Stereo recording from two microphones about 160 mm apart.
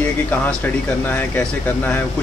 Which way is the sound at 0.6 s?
10° left (ahead or behind).